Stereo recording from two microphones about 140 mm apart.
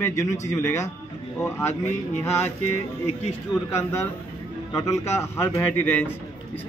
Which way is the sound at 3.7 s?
20° left (ahead or behind).